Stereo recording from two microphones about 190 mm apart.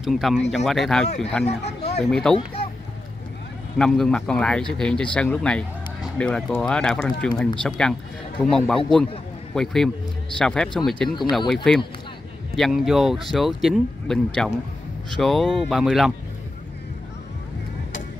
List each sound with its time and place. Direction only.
0.0 s speech: centre (ahead or behind)
1.0 s speech: 35° left (ahead or behind)
2.3 s speech: 5° left (ahead or behind)
3.7 s speech: 5° left (ahead or behind)